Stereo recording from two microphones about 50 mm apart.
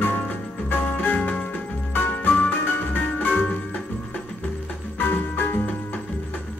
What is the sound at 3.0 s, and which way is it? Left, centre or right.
Music, left.